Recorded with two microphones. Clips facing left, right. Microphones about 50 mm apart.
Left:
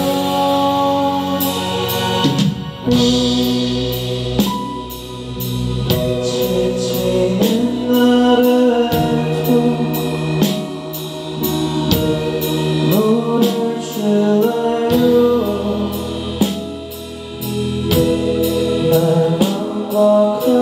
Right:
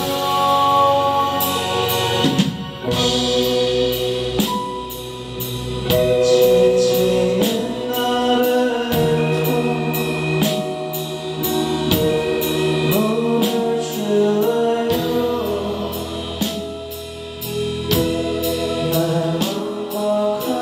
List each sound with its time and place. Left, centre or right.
0.0 s music: centre
0.7 s music: right
1.4 s music: centre
2.9 s music: centre
5.9 s music: right
7.4 s music: centre
9.6 s music: right
9.9 s music: centre
14.0 s music: centre
17.8 s music: centre